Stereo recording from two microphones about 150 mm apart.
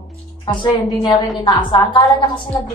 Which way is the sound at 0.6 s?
30° left (ahead or behind).